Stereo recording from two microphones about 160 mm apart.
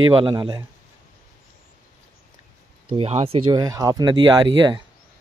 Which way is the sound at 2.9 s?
35° right (ahead or behind).